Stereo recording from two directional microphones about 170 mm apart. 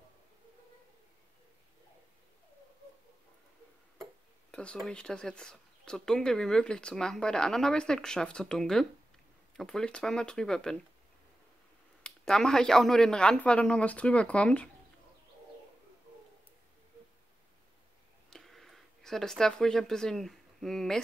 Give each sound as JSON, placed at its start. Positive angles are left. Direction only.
{"t": 4.5, "sound": "a sound", "side_deg": 5}
{"t": 4.8, "sound": "speech", "side_deg": 5}
{"t": 12.0, "sound": "speech", "side_deg": 5}
{"t": 18.3, "sound": "speech", "side_deg": 0}